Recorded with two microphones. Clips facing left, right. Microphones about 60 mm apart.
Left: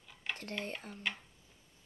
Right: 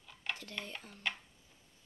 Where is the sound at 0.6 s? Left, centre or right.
Left.